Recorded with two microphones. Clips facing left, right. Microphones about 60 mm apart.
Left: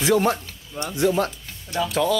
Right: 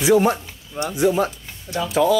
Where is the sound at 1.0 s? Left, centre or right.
Centre.